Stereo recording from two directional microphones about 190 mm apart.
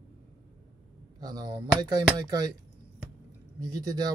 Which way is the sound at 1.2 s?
20° right (ahead or behind).